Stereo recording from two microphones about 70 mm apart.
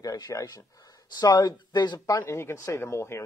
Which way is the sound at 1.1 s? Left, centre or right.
Left.